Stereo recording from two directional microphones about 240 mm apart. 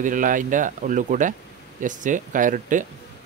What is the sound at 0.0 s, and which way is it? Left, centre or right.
Speech, right.